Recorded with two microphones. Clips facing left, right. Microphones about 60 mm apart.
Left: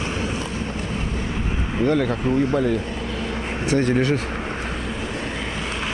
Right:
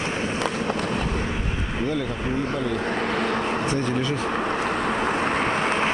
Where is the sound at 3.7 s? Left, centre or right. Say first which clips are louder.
Left 5 dB; left.